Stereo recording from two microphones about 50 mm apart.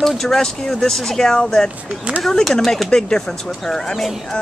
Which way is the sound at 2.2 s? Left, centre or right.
Centre.